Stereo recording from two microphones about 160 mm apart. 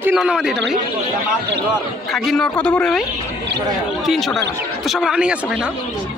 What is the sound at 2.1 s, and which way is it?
Speech, centre (ahead or behind).